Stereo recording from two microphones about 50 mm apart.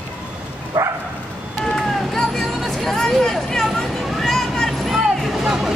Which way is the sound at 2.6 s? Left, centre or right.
Centre.